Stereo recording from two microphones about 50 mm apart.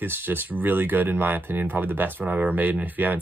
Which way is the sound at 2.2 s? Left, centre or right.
Right.